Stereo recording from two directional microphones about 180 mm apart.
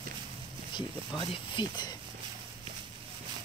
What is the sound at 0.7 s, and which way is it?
Speech, 25° left (ahead or behind).